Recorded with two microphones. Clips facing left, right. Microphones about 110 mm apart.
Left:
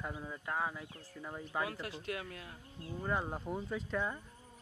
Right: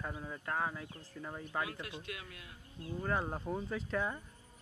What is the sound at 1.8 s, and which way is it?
Speech, 35° left (ahead or behind).